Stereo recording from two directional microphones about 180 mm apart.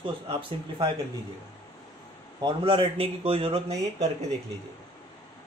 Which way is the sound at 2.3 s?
25° right (ahead or behind).